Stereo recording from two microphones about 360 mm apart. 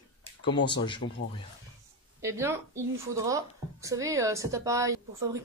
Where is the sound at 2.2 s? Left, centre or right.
Centre.